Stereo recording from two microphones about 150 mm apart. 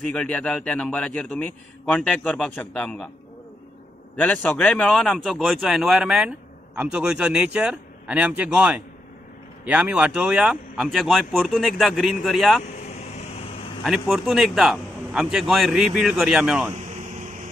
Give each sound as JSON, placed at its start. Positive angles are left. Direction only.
{"t": 0.0, "sound": "a man's voice", "side_deg": 5}
{"t": 4.2, "sound": "speech", "side_deg": 10}
{"t": 12.8, "sound": "a sound", "side_deg": 50}
{"t": 13.8, "sound": "speech", "side_deg": 0}
{"t": 16.7, "sound": "air conditioning", "side_deg": -50}